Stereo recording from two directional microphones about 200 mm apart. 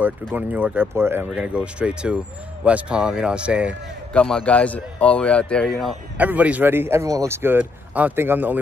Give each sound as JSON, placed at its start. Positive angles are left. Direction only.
{"t": 0.3, "sound": "speech", "side_deg": -10}
{"t": 4.1, "sound": "a man's voice", "side_deg": 5}